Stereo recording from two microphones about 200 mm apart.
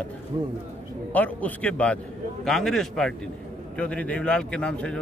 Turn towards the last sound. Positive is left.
turn(degrees=5)  # may be behind; listen again after turning